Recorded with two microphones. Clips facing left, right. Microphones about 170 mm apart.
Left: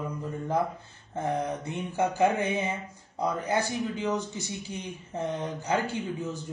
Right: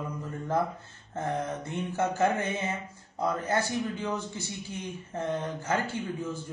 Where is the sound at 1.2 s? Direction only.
15° left (ahead or behind).